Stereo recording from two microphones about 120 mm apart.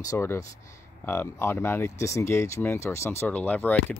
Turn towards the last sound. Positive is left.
turn(degrees=10)  # may be behind; listen again after turning